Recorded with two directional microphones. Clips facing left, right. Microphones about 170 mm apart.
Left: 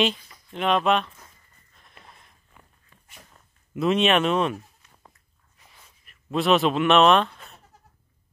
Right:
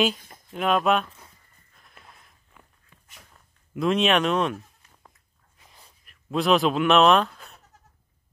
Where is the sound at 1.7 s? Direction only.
Centre (ahead or behind).